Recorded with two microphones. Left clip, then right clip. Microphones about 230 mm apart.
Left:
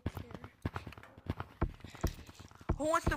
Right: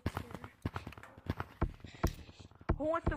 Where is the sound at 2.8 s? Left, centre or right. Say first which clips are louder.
Left 3 dB; left.